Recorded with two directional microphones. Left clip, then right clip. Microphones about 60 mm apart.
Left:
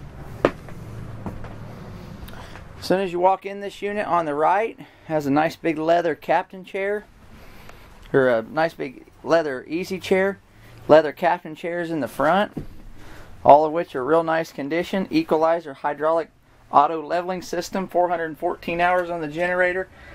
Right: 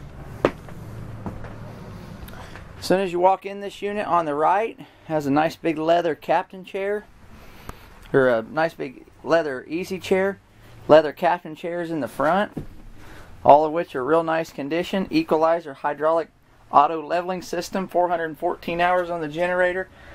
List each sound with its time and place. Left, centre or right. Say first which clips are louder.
1.2 s a sound: even; centre
2.8 s speech: right 1 dB; centre
10.9 s speech: even; centre
12.2 s speech: left 1 dB; left
13.4 s speech: left 1 dB; centre